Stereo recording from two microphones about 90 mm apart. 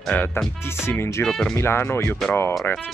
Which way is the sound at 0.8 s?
30° left (ahead or behind).